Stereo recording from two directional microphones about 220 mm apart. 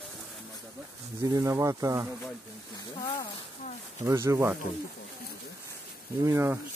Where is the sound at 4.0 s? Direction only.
15° right (ahead or behind).